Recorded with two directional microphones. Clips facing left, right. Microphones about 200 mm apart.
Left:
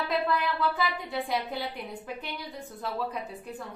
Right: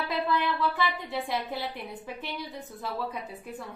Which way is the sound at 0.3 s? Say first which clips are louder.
Even; centre (ahead or behind).